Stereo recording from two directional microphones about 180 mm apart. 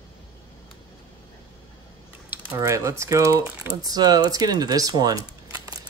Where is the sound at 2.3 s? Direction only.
15° right (ahead or behind).